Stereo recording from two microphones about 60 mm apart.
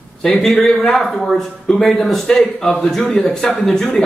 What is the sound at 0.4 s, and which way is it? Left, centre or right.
A man's voice, centre.